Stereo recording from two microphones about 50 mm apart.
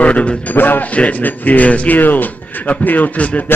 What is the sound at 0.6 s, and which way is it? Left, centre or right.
A man's voice, left.